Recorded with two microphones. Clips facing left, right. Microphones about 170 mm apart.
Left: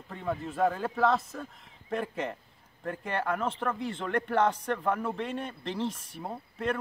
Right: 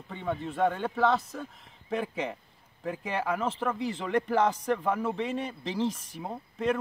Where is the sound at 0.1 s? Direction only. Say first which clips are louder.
Right 1 dB; centre (ahead or behind).